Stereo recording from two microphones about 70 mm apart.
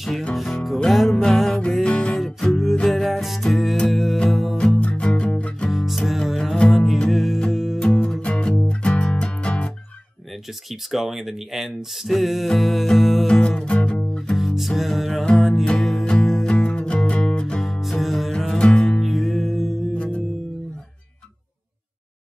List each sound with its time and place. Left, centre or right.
0.8 s music: centre
1.7 s music: centre
2.1 s music: centre
4.6 s music: centre
5.7 s music: centre
7.8 s music: centre
10.7 s speech: centre
13.3 s music: centre
14.3 s music: centre
14.8 s speech: centre
15.3 s music: centre
16.4 s music: centre
17.6 s music: centre
19.9 s music: centre